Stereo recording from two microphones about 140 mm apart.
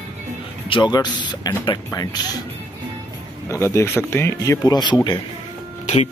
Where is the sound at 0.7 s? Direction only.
35° left (ahead or behind).